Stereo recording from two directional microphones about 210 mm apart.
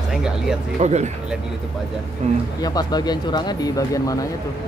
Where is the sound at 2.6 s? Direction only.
20° left (ahead or behind).